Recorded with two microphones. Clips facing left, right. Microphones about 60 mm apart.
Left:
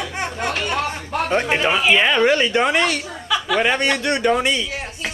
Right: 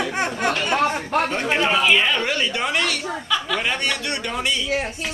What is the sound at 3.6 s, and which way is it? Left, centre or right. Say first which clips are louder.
Speech: left 5 dB; left.